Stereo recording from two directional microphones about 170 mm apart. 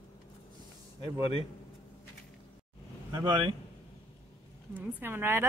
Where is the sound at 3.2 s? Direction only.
25° right (ahead or behind).